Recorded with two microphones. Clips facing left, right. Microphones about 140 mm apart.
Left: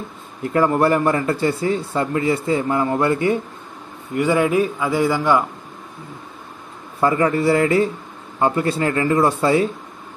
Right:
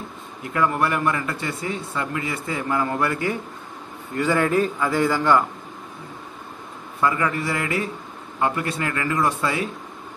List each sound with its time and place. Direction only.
0.5 s a man's voice: 35° left (ahead or behind); by 5.4 s 10° left (ahead or behind)
7.0 s speech: 30° left (ahead or behind)